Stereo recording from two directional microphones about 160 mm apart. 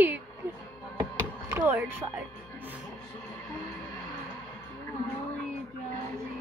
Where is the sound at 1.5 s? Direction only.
10° right (ahead or behind).